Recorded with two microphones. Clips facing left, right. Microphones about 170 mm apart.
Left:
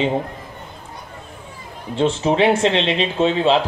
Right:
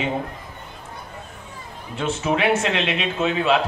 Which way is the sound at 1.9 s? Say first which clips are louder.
Left 5 dB; 30° left (ahead or behind).